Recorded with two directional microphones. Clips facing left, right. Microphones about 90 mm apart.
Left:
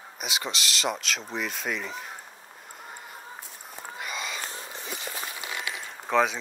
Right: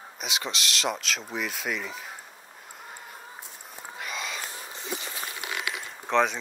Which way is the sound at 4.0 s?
Centre (ahead or behind).